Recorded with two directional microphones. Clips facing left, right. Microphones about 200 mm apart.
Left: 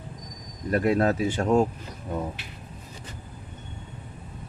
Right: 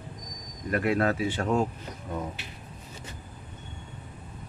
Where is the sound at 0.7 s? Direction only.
35° left (ahead or behind).